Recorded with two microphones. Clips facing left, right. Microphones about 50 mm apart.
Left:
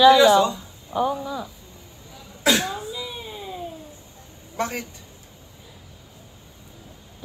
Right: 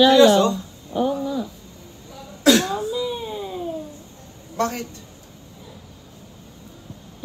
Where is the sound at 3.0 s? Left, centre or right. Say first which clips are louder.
Right 7 dB; centre.